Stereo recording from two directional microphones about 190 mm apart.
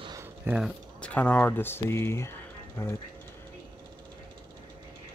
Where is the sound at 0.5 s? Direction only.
Centre (ahead or behind); by 2.3 s 15° left (ahead or behind).